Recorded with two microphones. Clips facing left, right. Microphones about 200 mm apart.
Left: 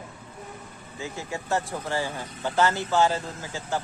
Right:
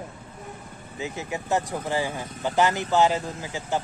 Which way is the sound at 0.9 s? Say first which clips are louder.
Right 2 dB; 20° right (ahead or behind).